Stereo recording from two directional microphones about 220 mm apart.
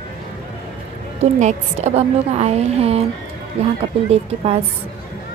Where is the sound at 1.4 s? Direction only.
30° right (ahead or behind).